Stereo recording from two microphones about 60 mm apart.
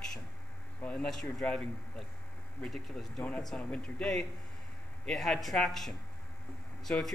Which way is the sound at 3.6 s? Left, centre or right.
Centre.